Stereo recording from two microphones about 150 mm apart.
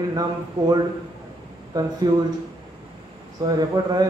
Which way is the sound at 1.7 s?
25° right (ahead or behind).